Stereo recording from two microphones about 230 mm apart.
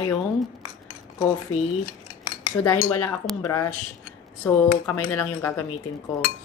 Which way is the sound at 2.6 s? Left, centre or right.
Centre.